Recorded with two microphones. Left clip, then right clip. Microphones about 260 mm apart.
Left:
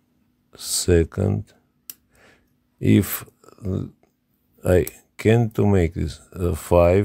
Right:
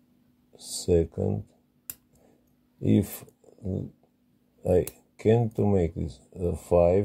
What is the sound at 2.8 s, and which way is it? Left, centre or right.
Speech, left.